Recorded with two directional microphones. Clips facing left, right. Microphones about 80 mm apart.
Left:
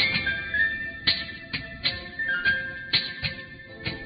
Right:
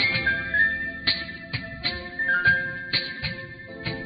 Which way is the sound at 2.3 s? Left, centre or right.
Right.